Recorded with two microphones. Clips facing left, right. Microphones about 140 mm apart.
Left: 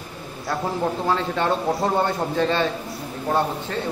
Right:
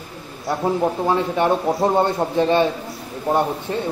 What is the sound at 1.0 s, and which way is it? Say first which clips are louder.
A man's voice: right 3 dB; 15° right (ahead or behind).